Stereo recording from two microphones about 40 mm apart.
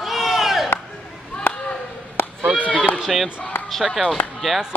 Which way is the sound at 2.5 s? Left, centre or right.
Right.